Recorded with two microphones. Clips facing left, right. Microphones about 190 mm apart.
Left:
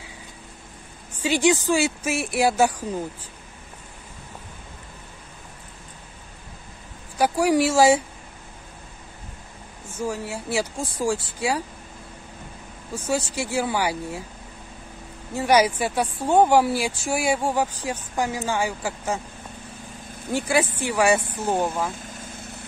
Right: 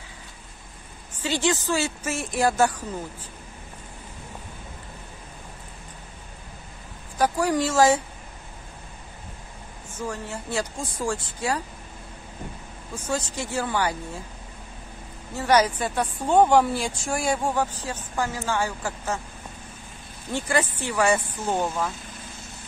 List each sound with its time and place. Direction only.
1.2 s speech: 15° left (ahead or behind)
7.2 s speech: 10° left (ahead or behind)
9.9 s speech: 10° left (ahead or behind)
12.9 s speech: 10° left (ahead or behind)
15.3 s speech: 10° left (ahead or behind)
20.3 s speech: 10° left (ahead or behind)
22.4 s vehicle: 60° left (ahead or behind)